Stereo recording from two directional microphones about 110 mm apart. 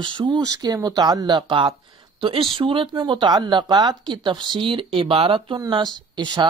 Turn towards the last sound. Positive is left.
turn(degrees=-40)  # may be behind; listen again after turning